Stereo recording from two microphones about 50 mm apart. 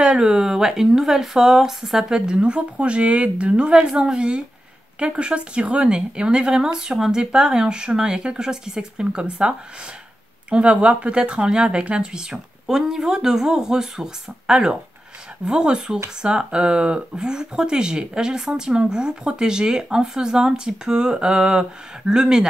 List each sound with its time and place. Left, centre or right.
0.0 s speech: centre